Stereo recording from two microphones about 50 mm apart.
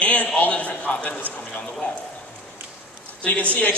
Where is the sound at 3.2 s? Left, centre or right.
Left.